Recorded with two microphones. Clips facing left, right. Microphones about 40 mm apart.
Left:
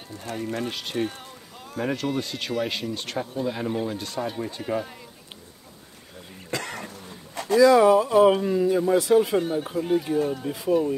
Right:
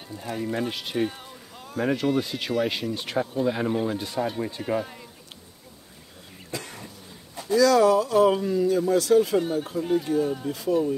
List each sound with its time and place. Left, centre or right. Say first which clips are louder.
0.7 s speech: right 1 dB; centre
6.5 s cough: left 5 dB; left
7.5 s speech: left 2 dB; left
9.4 s speech: even; centre